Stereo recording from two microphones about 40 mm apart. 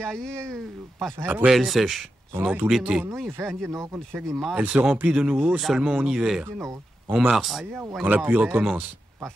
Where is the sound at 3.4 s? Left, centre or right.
Right.